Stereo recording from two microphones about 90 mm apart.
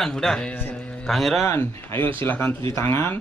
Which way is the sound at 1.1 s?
Centre (ahead or behind).